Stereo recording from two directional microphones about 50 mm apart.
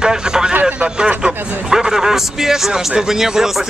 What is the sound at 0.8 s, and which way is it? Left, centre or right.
A man's voice, centre.